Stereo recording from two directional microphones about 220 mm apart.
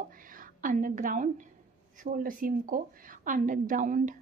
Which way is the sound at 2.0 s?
40° right (ahead or behind).